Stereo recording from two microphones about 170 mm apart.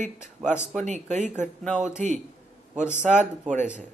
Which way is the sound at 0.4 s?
10° right (ahead or behind).